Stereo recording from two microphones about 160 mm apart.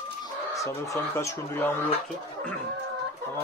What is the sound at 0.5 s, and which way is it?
Speech, 20° left (ahead or behind).